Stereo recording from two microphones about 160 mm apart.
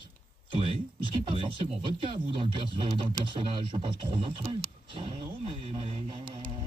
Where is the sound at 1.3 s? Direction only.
35° right (ahead or behind).